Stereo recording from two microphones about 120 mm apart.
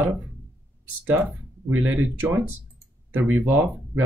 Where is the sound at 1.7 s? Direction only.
15° right (ahead or behind).